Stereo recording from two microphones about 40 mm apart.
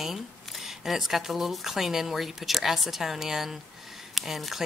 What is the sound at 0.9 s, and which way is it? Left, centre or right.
A woman's voice, centre.